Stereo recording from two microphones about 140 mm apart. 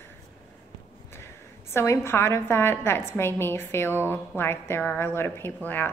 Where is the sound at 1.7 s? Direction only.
20° left (ahead or behind).